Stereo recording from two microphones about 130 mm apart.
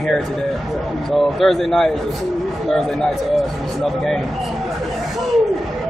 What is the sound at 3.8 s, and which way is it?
Speech, 5° left (ahead or behind).